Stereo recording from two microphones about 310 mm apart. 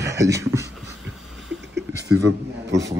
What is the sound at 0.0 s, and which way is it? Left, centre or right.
Speech, centre.